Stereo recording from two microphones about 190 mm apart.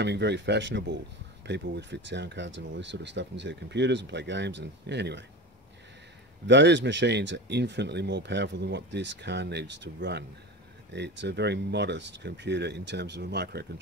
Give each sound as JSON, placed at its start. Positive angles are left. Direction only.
{"t": 0.0, "sound": "speech", "side_deg": -65}
{"t": 6.4, "sound": "speech", "side_deg": -65}